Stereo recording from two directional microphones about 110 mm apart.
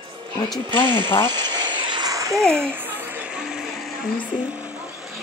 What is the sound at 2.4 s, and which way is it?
Speech, 5° left (ahead or behind).